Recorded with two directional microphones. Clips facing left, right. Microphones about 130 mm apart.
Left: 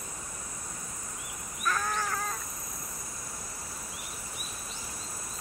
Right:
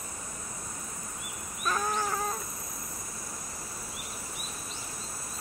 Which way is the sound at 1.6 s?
20° right (ahead or behind).